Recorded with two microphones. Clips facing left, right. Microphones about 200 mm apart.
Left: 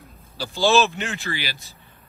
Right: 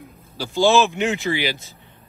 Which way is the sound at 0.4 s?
15° right (ahead or behind).